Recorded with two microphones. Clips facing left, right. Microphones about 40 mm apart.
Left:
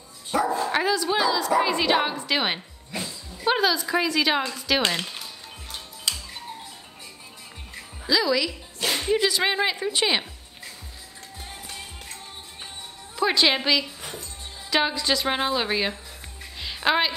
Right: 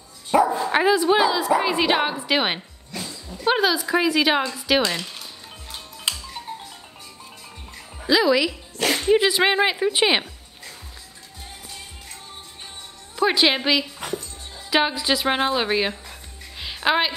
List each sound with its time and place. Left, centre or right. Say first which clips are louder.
0.3 s speech: right 5 dB; centre
2.9 s dog: left 1 dB; centre
3.4 s speech: right 2 dB; centre
6.1 s music: right 2 dB; right
8.1 s speech: right 4 dB; right
8.8 s music: right 4 dB; right
9.1 s speech: right 5 dB; right
13.2 s speech: right 2 dB; centre
16.5 s music: right 2 dB; centre